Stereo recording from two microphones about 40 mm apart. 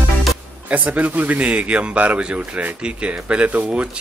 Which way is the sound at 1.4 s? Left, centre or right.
Right.